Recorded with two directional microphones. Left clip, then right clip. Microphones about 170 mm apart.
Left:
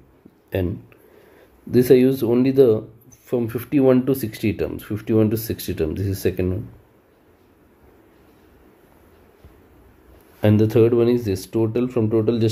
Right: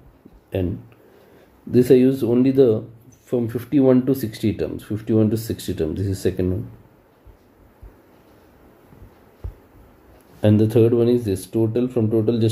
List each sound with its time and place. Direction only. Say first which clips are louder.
0.6 s a man's voice: even; 20° left (ahead or behind)
10.4 s speech: even; 25° left (ahead or behind)